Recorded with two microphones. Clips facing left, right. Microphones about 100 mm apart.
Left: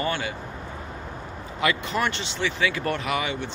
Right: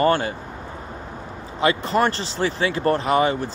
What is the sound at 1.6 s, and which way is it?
Speech, 35° right (ahead or behind).